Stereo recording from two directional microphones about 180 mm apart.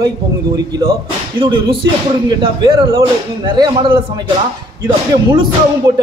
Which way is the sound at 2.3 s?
25° right (ahead or behind).